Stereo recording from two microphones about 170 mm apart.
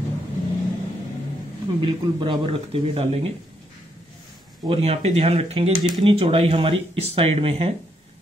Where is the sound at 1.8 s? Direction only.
30° right (ahead or behind).